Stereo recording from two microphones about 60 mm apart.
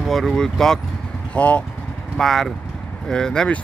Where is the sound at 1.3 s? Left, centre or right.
Left.